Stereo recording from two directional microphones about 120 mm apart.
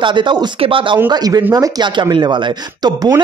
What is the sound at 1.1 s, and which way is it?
Speech, 30° right (ahead or behind).